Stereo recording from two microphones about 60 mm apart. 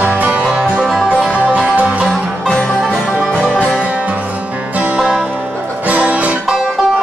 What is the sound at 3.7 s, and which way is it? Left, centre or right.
Music, right.